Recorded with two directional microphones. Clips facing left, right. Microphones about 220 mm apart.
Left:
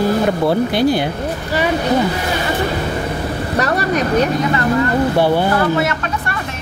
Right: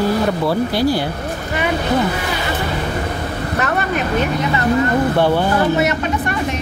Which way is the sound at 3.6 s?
40° left (ahead or behind).